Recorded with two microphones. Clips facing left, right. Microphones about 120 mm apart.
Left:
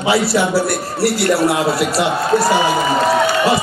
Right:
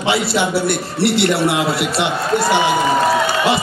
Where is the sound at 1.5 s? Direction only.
25° left (ahead or behind).